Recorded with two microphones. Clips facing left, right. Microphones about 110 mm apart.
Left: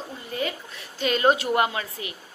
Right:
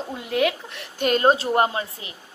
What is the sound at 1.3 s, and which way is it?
Speech, 35° right (ahead or behind).